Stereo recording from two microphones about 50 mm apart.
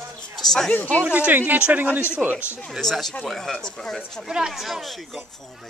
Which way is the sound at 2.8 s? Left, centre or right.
Centre.